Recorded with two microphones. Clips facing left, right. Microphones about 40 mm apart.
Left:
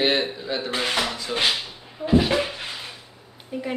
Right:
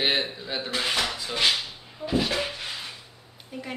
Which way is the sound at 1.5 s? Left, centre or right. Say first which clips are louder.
Even; centre.